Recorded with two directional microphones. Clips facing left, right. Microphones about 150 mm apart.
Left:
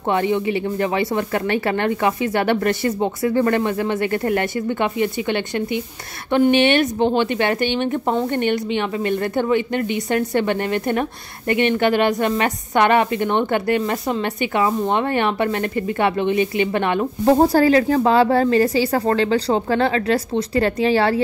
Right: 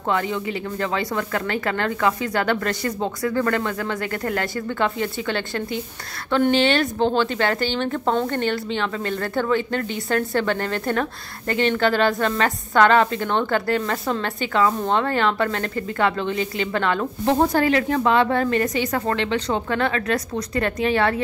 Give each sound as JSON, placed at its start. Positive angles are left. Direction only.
{"t": 0.1, "sound": "a woman's voice", "side_deg": 25}
{"t": 17.2, "sound": "a woman's voice", "side_deg": 35}